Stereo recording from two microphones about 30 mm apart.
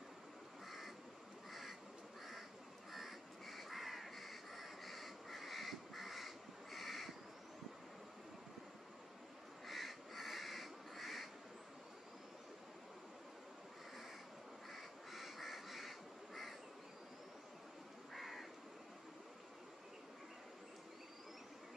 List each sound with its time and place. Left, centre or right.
0.7 s crow: centre
1.5 s duck: centre
2.9 s crow: centre
9.7 s crow: centre
14.7 s duck: centre
18.1 s crow: centre